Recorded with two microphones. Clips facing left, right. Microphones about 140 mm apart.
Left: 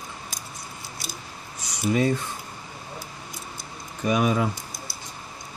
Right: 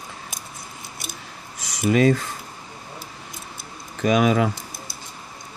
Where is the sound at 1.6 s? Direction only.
90° right.